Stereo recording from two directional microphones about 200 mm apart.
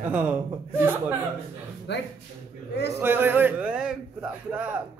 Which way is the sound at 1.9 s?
60° left (ahead or behind).